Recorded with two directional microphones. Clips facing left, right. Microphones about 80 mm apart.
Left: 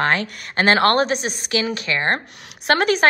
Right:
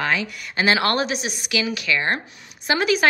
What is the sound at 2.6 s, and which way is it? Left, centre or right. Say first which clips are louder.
Speech: left 3 dB; left.